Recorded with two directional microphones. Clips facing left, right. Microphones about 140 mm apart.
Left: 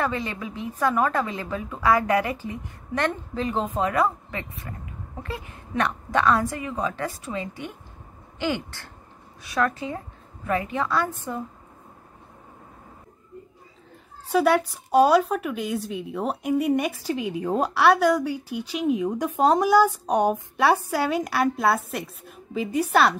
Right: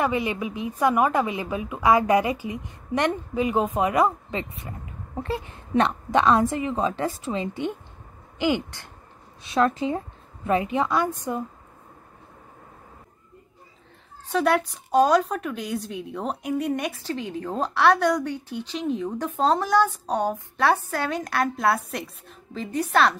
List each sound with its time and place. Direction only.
0.0 s a woman's voice: 15° right (ahead or behind)
14.2 s a woman's voice: 5° left (ahead or behind)